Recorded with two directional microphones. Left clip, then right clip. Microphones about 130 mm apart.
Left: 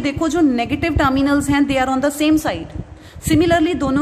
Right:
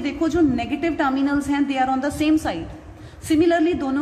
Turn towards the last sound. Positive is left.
turn(degrees=65)  # may be behind; listen again after turning